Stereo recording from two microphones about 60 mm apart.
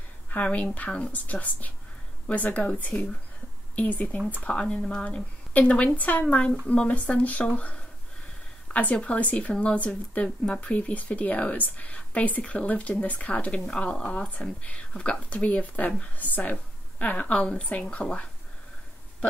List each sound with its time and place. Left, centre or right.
0.3 s speech: left